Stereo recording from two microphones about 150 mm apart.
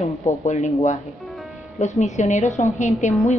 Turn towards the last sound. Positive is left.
turn(degrees=50)  # may be behind; listen again after turning